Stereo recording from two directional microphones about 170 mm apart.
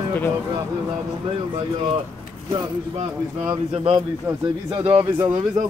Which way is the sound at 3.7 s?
35° right (ahead or behind).